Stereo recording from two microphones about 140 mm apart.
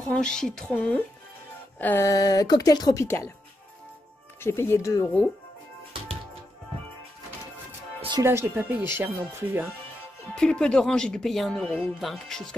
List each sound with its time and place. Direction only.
0.0 s speech: 5° left (ahead or behind)
2.0 s speech: 25° left (ahead or behind)
4.4 s speech: 15° left (ahead or behind)
8.2 s speech: 15° right (ahead or behind)
10.3 s speech: 5° left (ahead or behind)